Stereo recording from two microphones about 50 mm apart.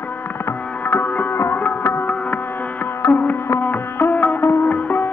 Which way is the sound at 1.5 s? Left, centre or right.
Left.